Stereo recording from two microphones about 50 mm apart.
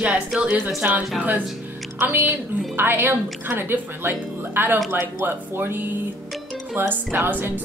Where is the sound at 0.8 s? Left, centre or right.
Right.